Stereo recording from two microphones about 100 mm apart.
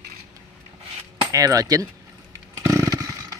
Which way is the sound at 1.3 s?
35° right (ahead or behind).